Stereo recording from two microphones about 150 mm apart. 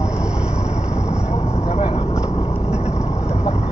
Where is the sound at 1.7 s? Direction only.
35° left (ahead or behind).